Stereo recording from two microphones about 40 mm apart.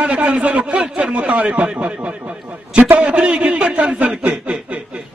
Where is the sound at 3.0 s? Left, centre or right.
Right.